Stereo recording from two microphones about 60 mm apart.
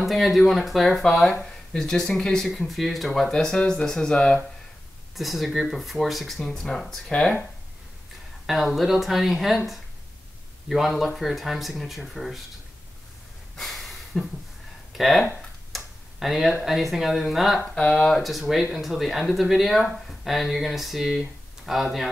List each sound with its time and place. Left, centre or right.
0.0 s speech: centre
5.1 s speech: centre
8.5 s speech: centre
10.7 s speech: centre
13.6 s a sound: centre
14.9 s speech: centre
15.7 s tick-tock: centre
16.6 s speech: centre
17.6 s speech: centre
18.1 s speech: centre